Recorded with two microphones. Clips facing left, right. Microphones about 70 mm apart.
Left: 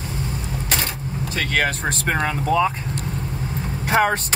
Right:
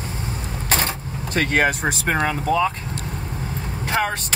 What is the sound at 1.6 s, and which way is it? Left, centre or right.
Speech, centre.